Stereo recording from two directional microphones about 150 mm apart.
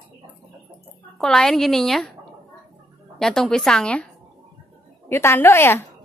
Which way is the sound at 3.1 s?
Centre (ahead or behind).